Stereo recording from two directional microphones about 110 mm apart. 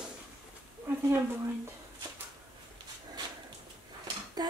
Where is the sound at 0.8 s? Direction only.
20° right (ahead or behind).